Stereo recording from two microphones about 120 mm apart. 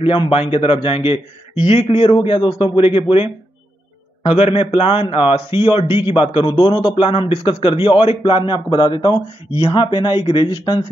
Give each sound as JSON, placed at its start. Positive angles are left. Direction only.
{"t": 0.0, "sound": "a man's voice", "side_deg": 50}
{"t": 2.1, "sound": "a man's voice", "side_deg": 45}